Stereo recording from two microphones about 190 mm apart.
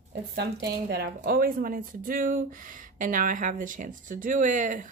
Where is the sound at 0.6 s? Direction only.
55° right (ahead or behind).